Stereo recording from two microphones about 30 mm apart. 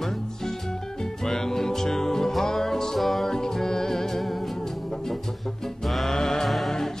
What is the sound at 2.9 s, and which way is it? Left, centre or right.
Music, centre.